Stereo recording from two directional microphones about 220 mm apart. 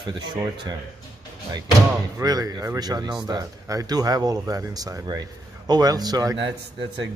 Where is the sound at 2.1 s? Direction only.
15° right (ahead or behind).